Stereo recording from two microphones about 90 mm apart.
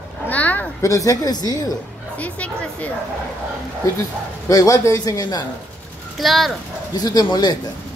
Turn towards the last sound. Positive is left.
turn(degrees=50)  # may be behind; listen again after turning